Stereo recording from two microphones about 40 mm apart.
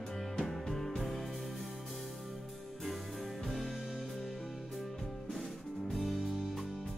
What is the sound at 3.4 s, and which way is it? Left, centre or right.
Music, centre.